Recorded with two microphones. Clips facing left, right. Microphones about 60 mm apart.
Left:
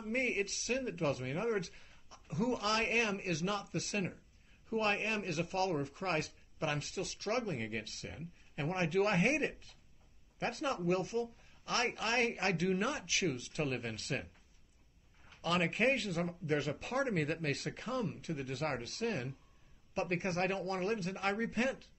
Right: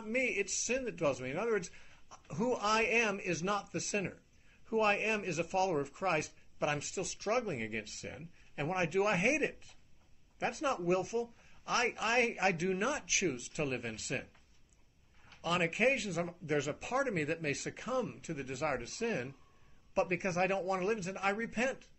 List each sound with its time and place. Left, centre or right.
0.0 s speech: centre
9.4 s speech: centre
15.4 s speech: centre